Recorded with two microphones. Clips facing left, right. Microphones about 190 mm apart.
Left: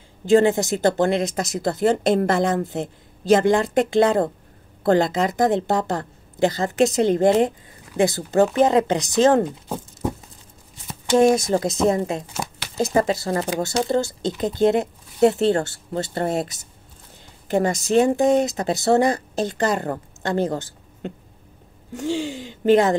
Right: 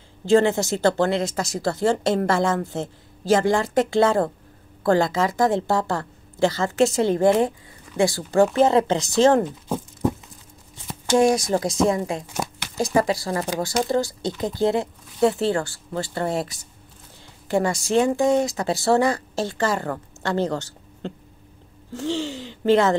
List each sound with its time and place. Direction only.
0.2 s speech: 15° left (ahead or behind)
11.1 s speech: 25° left (ahead or behind)
13.3 s speech: 35° left (ahead or behind)
13.6 s speech: 25° left (ahead or behind)
22.1 s speech: 15° left (ahead or behind)